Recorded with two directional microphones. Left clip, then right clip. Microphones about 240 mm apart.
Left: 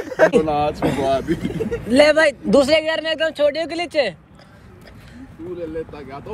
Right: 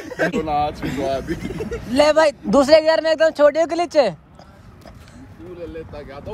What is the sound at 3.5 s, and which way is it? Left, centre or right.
Speech, right.